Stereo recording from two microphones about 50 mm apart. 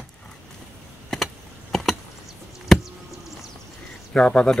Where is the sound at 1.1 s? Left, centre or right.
Centre.